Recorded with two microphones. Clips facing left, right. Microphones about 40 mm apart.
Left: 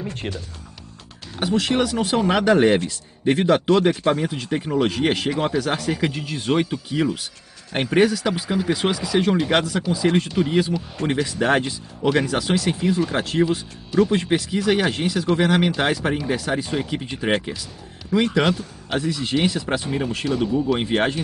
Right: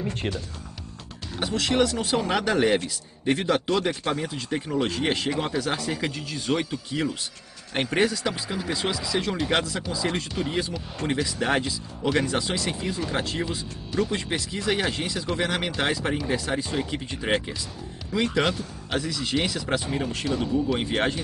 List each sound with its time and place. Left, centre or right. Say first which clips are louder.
0.0 s speech: even; centre
1.4 s speech: left 3 dB; centre
5.3 s speech: left 5 dB; centre
5.9 s speech: left 5 dB; centre
12.4 s speech: left 7 dB; left
13.4 s speech: left 9 dB; centre
15.2 s speech: left 9 dB; centre
18.9 s speech: left 4 dB; left
19.8 s speech: left 4 dB; centre